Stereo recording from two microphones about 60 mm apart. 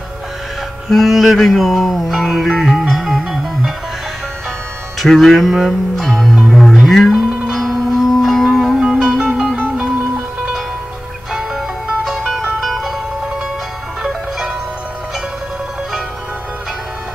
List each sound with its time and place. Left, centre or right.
0.8 s music: centre
5.0 s music: centre
11.5 s music: centre